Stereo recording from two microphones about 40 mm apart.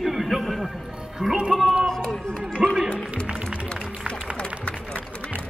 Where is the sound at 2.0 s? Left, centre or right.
Left.